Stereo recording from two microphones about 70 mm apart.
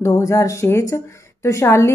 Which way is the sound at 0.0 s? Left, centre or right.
Left.